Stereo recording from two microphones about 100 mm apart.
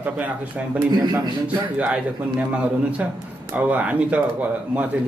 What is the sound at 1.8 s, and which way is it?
A man's voice, 10° right (ahead or behind).